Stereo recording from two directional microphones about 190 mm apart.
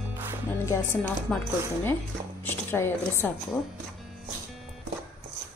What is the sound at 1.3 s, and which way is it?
A woman's voice, 5° left (ahead or behind).